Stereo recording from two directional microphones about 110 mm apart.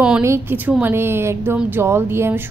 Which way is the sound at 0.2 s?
25° right (ahead or behind).